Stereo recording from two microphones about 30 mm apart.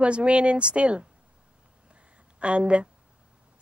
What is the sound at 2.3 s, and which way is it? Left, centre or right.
Speech, right.